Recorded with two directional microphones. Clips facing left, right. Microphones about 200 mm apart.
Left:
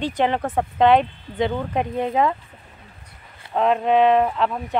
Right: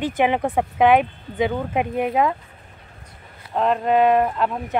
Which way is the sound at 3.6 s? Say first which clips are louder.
Left 1 dB; centre (ahead or behind).